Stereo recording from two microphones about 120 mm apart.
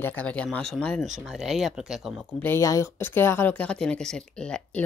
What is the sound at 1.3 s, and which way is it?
Speech, 5° right (ahead or behind).